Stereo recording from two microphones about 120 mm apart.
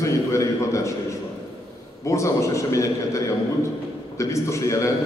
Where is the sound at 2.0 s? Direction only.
25° left (ahead or behind).